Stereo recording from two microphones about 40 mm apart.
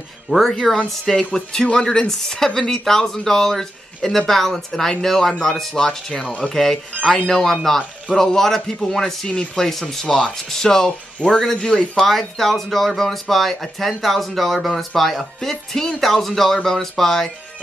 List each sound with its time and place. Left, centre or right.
0.5 s speech: centre
5.8 s speech: centre
9.6 s speech: centre
11.5 s speech: left
12.0 s speech: centre